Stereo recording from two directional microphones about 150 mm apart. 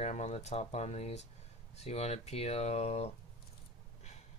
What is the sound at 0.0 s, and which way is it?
Speech, 50° left (ahead or behind).